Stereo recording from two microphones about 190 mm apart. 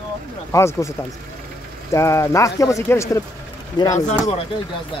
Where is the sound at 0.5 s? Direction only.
15° left (ahead or behind).